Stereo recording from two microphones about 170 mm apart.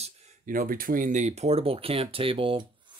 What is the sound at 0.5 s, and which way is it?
Speech, 55° right (ahead or behind).